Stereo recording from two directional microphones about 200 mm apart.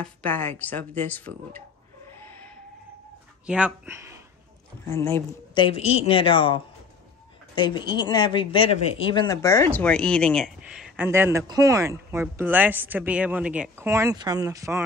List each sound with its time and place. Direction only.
0.2 s speech: 10° left (ahead or behind)
3.4 s speech: 5° right (ahead or behind)
4.8 s speech: 15° left (ahead or behind); by 11.1 s 5° right (ahead or behind)
11.1 s speech: 15° right (ahead or behind)